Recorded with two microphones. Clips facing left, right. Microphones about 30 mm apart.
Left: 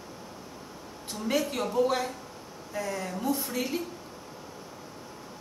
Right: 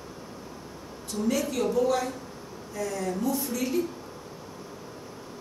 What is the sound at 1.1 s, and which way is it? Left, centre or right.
Speech, left.